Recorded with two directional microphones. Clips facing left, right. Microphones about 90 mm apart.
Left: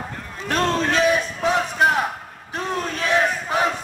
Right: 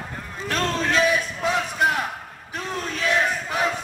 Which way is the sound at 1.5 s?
25° left (ahead or behind).